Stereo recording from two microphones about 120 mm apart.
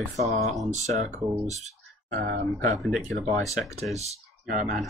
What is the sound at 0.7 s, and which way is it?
Speech, 75° right (ahead or behind).